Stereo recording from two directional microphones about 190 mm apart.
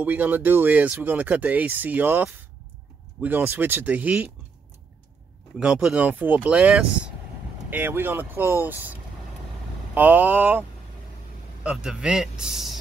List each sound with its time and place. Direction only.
0.0 s speech: 10° right (ahead or behind)
5.6 s speech: 5° right (ahead or behind)
9.9 s speech: 10° right (ahead or behind)
11.6 s a man's voice: 5° right (ahead or behind)